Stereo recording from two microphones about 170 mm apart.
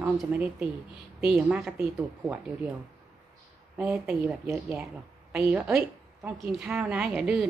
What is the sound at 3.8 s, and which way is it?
A woman's voice, 5° right (ahead or behind).